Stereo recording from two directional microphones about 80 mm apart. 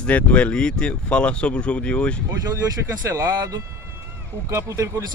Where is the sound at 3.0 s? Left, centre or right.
Right.